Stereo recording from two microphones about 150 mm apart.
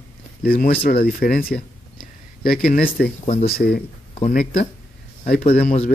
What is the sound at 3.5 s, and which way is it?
Speech, 90° left.